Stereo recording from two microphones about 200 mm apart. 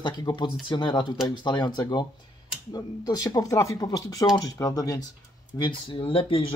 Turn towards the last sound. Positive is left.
turn(degrees=25)  # may be behind; listen again after turning